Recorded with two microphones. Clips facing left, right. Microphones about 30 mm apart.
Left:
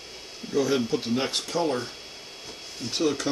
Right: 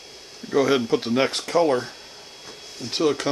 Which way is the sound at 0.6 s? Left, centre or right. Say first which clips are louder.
Right 5 dB; right.